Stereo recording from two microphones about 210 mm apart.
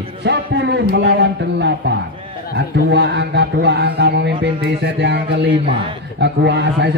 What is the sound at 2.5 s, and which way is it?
A man's voice, 55° right (ahead or behind).